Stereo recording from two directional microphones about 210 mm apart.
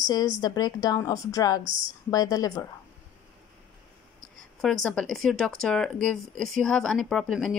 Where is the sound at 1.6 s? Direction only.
40° right (ahead or behind).